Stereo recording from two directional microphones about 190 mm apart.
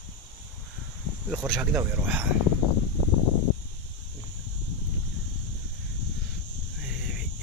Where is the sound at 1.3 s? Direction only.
5° right (ahead or behind).